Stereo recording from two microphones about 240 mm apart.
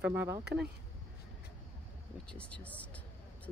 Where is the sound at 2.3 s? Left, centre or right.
Centre.